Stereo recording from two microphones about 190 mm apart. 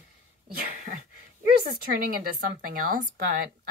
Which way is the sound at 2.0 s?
50° right (ahead or behind).